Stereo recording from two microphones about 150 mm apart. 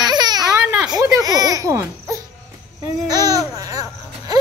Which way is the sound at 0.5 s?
5° right (ahead or behind).